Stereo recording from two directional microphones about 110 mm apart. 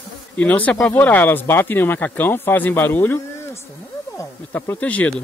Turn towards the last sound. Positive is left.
turn(degrees=15)  # may be behind; listen again after turning